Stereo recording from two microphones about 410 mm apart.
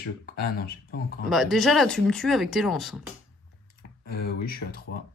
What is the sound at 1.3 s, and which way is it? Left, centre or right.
Speech, centre.